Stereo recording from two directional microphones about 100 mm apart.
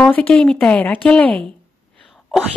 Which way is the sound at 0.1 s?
15° left (ahead or behind).